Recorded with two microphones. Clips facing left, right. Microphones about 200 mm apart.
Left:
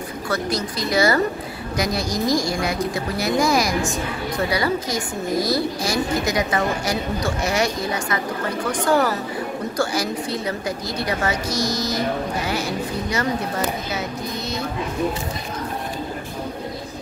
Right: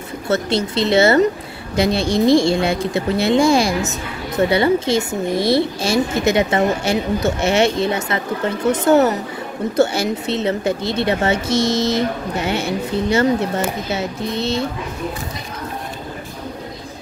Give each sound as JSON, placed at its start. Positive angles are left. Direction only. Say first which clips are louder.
{"t": 0.3, "sound": "a woman's voice", "louder": "right 6 dB", "side_deg": -25}